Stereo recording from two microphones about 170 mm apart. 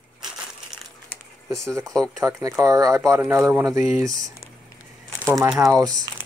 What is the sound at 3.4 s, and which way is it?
Speech, 20° right (ahead or behind).